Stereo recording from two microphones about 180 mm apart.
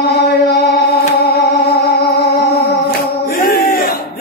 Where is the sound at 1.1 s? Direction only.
60° left (ahead or behind).